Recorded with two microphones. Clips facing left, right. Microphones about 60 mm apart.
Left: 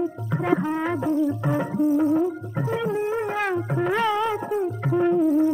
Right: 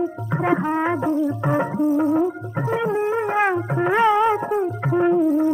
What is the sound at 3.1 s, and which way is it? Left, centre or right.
Shofar, right.